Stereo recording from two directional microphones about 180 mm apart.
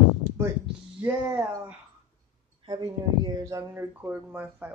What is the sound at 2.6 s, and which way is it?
Speech, 25° right (ahead or behind).